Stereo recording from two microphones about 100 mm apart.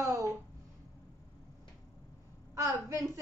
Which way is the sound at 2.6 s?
30° right (ahead or behind).